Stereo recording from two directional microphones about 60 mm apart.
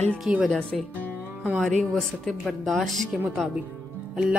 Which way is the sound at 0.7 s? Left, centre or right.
Centre.